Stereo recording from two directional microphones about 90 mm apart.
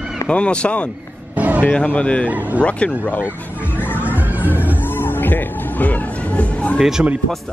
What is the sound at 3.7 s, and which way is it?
Music, 25° left (ahead or behind).